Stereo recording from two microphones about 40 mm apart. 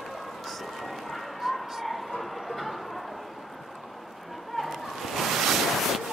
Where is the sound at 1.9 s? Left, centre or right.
Centre.